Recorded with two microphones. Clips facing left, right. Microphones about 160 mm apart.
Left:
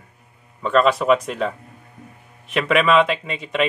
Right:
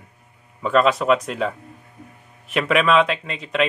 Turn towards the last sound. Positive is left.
turn(degrees=0)  # may be behind; listen again after turning